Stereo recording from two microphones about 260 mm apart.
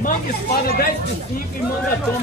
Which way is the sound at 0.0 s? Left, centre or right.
Left.